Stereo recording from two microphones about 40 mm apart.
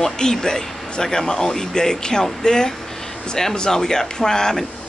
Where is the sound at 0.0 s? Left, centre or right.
Centre.